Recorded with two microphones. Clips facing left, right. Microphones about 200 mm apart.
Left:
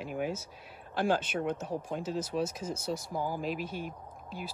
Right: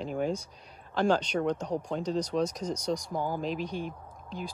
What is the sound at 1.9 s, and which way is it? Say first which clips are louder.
Speech: right 4 dB; 5° left (ahead or behind).